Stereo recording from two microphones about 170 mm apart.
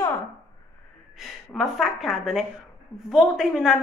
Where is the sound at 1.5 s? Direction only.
Centre (ahead or behind).